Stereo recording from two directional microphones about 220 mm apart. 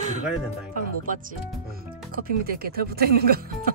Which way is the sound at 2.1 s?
45° right (ahead or behind).